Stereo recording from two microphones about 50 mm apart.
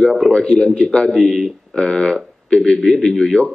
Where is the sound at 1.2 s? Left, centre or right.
Centre.